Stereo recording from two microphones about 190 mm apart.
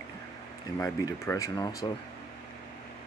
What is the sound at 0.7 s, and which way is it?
Speech, 15° left (ahead or behind).